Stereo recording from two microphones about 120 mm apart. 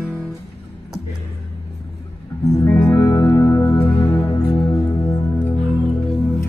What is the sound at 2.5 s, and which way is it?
Music, 25° left (ahead or behind).